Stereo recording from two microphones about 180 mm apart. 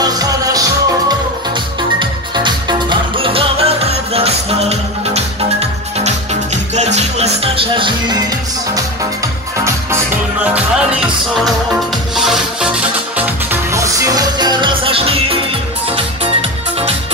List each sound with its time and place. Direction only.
0.0 s music: 20° right (ahead or behind); by 7.2 s 40° right (ahead or behind)
7.5 s music: 30° right (ahead or behind)
10.4 s music: 5° right (ahead or behind)
13.2 s music: 15° right (ahead or behind); by 15.3 s 30° right (ahead or behind)